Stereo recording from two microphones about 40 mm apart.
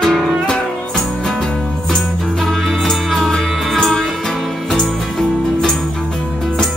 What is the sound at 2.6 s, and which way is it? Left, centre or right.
Music, centre.